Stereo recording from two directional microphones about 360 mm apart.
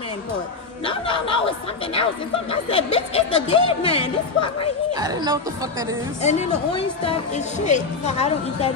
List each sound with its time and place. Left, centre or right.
0.8 s speech: centre
2.5 s speech: centre
5.0 s speech: centre
6.2 s a woman's voice: centre